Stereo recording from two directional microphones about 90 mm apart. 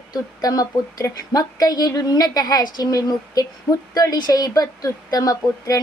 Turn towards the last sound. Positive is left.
turn(degrees=40)  # may be behind; listen again after turning